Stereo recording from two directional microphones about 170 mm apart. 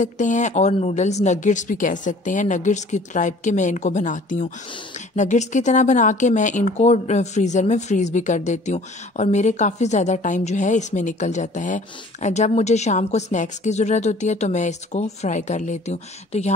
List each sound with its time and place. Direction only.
0.0 s speech: 45° left (ahead or behind)